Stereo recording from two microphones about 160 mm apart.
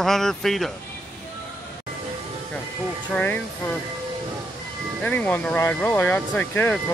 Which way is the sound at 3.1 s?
10° left (ahead or behind).